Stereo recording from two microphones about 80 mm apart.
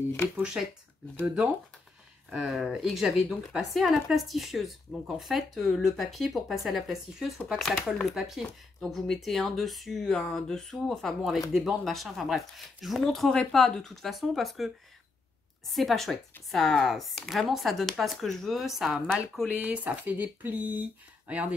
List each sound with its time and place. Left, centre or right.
1.2 s speech: centre
15.7 s speech: centre
19.5 s speech: centre